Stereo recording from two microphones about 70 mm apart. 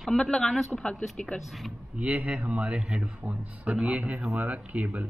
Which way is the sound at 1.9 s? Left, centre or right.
Right.